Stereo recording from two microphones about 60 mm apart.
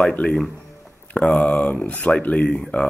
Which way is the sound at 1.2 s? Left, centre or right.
Centre.